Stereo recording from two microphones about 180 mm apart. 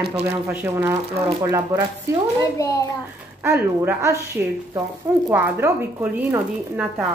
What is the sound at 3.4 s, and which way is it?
Speech, 15° right (ahead or behind).